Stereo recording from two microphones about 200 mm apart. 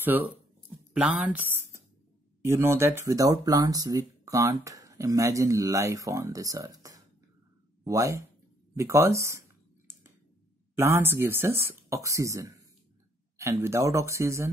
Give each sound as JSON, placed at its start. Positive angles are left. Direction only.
{"t": 0.0, "sound": "speech", "side_deg": -10}
{"t": 10.8, "sound": "speech", "side_deg": -10}